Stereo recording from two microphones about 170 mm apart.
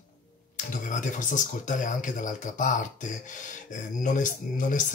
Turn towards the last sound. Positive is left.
turn(degrees=50)  # may be behind; listen again after turning